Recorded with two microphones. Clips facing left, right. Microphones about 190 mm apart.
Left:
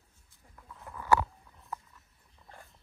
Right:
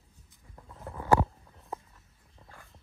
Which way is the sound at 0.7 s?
35° right (ahead or behind).